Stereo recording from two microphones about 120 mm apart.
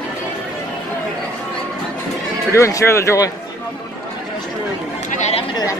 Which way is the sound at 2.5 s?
25° left (ahead or behind).